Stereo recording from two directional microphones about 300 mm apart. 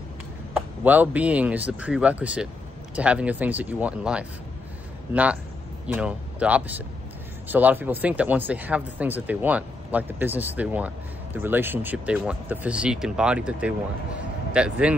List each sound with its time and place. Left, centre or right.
0.8 s a man's voice: centre